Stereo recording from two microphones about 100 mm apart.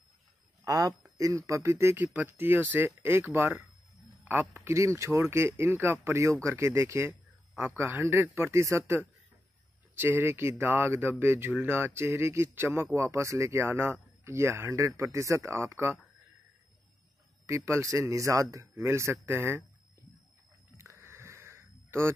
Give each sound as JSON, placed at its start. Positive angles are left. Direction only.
{"t": 0.7, "sound": "speech", "side_deg": -35}
{"t": 17.5, "sound": "speech", "side_deg": -30}
{"t": 21.0, "sound": "a sound", "side_deg": -25}